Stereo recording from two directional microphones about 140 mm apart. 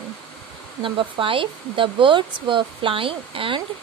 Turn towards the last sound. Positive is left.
turn(degrees=-40)  # may be behind; listen again after turning